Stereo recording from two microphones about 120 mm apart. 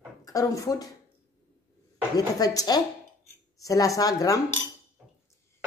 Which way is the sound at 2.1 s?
30° left (ahead or behind).